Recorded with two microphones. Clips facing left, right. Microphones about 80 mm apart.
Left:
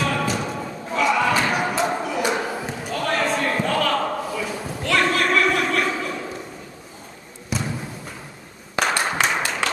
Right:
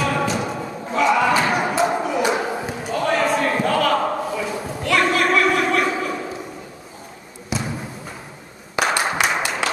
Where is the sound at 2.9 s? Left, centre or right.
Centre.